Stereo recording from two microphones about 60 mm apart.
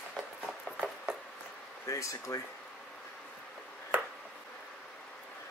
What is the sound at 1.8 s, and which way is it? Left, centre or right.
Speech, left.